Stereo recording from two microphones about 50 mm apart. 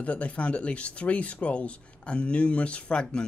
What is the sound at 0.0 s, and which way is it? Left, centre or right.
Speech, left.